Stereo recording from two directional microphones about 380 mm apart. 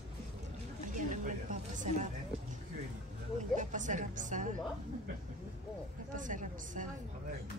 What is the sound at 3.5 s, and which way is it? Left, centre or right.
Speech, centre.